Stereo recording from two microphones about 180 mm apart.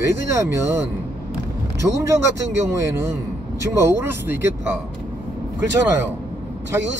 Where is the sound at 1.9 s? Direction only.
15° right (ahead or behind).